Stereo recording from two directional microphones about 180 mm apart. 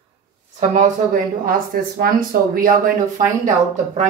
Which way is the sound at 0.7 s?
45° right (ahead or behind).